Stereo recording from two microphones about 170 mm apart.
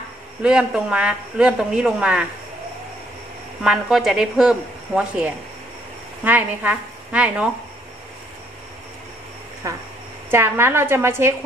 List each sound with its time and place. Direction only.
0.4 s speech: 5° right (ahead or behind)
3.6 s a woman's voice: 5° right (ahead or behind)
9.6 s a woman's voice: 20° right (ahead or behind)